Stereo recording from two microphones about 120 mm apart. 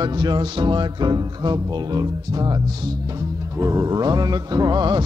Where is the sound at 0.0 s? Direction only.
35° right (ahead or behind).